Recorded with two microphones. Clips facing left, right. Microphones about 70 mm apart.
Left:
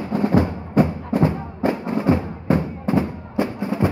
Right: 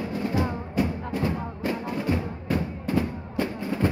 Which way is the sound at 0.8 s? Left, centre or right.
Left.